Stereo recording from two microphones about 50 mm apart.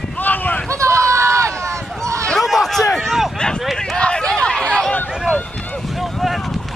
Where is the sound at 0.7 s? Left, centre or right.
Right.